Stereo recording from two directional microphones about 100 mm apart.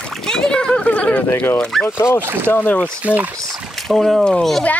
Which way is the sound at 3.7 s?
Centre (ahead or behind).